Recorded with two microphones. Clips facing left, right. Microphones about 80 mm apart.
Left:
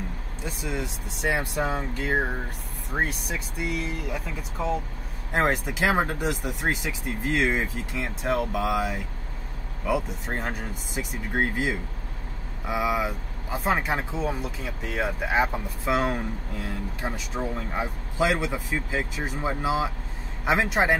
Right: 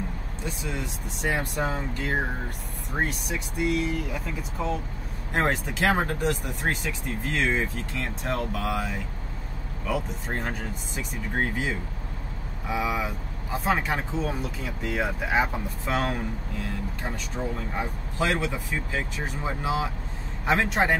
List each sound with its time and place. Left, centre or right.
0.5 s speech: centre
17.0 s speech: centre